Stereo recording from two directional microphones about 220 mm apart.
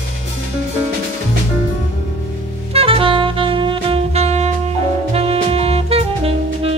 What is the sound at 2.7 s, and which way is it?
Saxophone, 25° right (ahead or behind).